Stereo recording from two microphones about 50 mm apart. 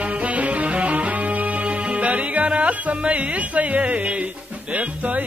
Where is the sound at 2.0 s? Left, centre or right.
Right.